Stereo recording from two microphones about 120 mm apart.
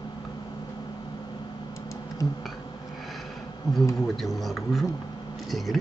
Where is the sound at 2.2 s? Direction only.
25° left (ahead or behind).